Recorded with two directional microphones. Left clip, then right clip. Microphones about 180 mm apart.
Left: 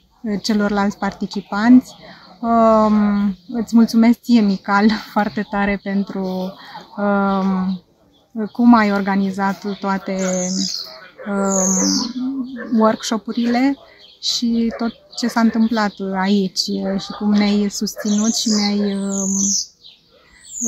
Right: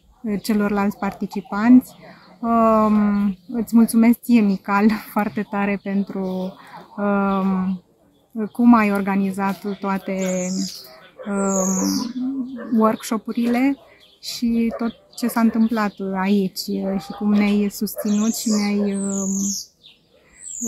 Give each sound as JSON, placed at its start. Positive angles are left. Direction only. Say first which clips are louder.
{"t": 0.2, "sound": "speech", "louder": "left 3 dB", "side_deg": 5}
{"t": 11.2, "sound": "speech", "louder": "left 3 dB", "side_deg": 10}
{"t": 11.8, "sound": "music", "louder": "left 4 dB", "side_deg": 50}
{"t": 12.7, "sound": "speech", "louder": "left 3 dB", "side_deg": 5}
{"t": 19.3, "sound": "music", "louder": "left 7 dB", "side_deg": 50}